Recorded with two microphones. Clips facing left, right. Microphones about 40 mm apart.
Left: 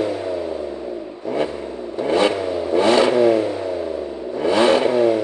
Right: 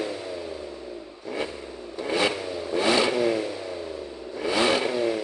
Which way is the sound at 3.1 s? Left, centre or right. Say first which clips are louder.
Left 9 dB; left.